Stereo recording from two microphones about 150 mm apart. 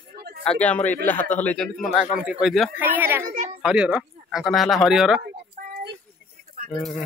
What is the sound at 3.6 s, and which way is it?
A man's voice, 5° right (ahead or behind).